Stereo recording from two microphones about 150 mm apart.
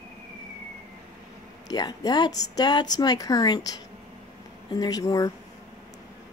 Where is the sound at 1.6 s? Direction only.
25° left (ahead or behind).